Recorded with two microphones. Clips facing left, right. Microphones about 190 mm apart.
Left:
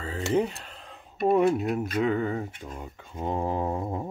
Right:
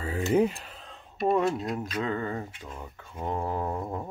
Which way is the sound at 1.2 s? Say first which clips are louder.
Left 3 dB; 10° left (ahead or behind).